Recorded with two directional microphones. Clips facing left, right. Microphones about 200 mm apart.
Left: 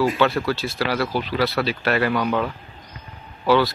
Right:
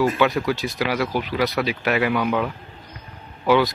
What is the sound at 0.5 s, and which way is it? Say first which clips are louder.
Speech: even; 15° right (ahead or behind).